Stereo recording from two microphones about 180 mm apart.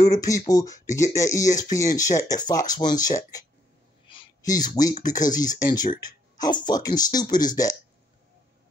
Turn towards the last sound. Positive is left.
turn(degrees=20)  # may be behind; listen again after turning